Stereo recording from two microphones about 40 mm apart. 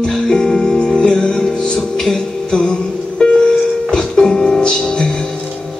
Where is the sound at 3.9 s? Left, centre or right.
Centre.